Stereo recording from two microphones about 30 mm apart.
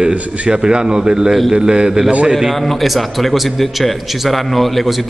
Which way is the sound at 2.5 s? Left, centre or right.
Centre.